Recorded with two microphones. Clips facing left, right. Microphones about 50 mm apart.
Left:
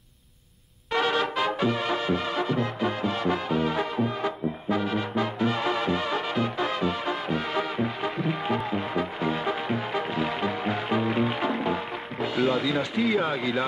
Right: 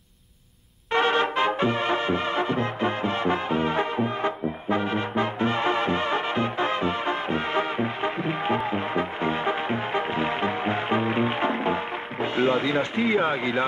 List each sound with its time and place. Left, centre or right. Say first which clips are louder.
0.9 s brass instrument: right 3 dB; right
8.6 s music: right 2 dB; right